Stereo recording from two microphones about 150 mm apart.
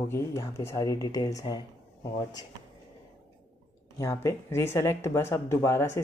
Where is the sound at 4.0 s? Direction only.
20° left (ahead or behind).